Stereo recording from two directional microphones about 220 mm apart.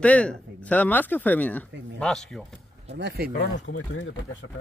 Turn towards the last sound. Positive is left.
turn(degrees=60)  # may be behind; listen again after turning